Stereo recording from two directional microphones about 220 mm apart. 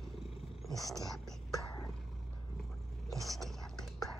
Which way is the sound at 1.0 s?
Centre (ahead or behind).